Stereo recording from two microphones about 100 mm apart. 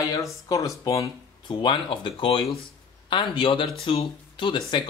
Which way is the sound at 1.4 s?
50° left (ahead or behind).